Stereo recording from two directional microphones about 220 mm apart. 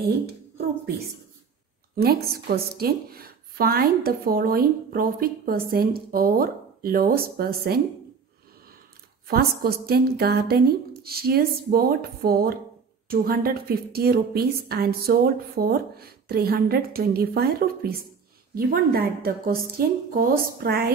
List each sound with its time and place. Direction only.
2.4 s a woman's voice: 45° right (ahead or behind)
9.3 s a woman's voice: 45° right (ahead or behind)